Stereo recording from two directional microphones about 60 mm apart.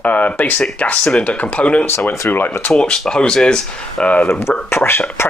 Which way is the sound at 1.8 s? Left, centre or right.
Left.